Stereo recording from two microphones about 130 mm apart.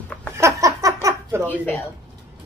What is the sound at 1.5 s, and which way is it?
Speech, 15° left (ahead or behind).